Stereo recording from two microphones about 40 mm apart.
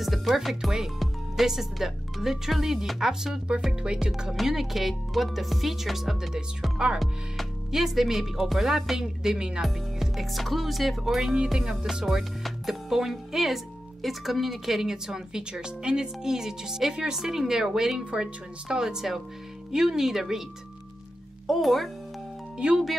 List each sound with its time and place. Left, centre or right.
0.0 s speech: centre
3.5 s speech: right
4.5 s speech: centre
9.6 s speech: centre
17.9 s speech: right
21.5 s speech: centre
22.6 s speech: right